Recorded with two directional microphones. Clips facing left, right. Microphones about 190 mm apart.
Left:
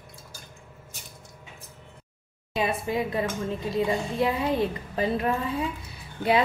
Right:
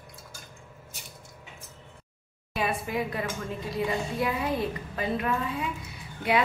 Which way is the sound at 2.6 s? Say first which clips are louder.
Left 3 dB; 20° left (ahead or behind).